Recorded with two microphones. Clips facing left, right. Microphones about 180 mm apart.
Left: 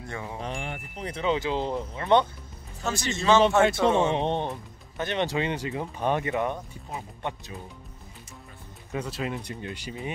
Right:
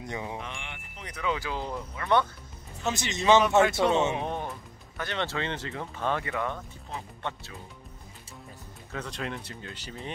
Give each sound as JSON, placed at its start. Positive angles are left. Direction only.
{"t": 0.0, "sound": "chime", "side_deg": -15}
{"t": 0.4, "sound": "speech", "side_deg": 35}
{"t": 2.8, "sound": "speech", "side_deg": -20}
{"t": 4.1, "sound": "speech", "side_deg": 25}
{"t": 8.9, "sound": "speech", "side_deg": 5}